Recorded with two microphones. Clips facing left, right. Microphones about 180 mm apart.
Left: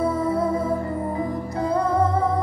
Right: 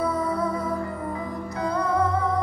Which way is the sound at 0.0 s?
25° left (ahead or behind).